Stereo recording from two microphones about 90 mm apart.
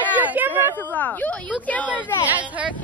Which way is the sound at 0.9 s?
20° left (ahead or behind).